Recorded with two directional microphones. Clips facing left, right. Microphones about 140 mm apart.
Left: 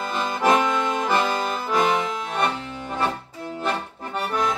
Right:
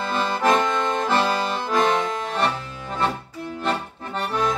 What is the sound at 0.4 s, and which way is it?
Accordion, 10° left (ahead or behind).